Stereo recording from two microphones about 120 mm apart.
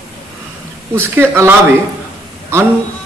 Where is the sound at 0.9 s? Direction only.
20° right (ahead or behind).